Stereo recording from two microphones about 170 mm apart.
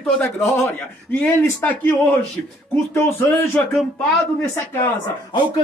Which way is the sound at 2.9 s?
15° left (ahead or behind).